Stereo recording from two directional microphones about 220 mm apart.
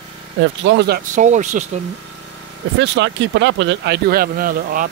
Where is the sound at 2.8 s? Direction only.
55° right (ahead or behind).